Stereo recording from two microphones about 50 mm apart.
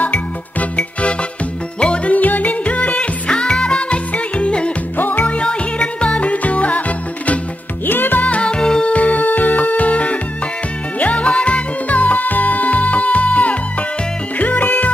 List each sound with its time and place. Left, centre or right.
0.0 s music: left
2.1 s music: left
4.9 s music: left
5.2 s music: left
7.8 s music: left
8.3 s music: left
8.9 s music: left